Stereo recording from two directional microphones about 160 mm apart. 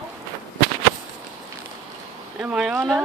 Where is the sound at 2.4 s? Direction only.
5° right (ahead or behind).